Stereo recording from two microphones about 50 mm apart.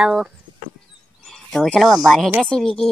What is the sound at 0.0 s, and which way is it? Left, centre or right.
Speech, centre.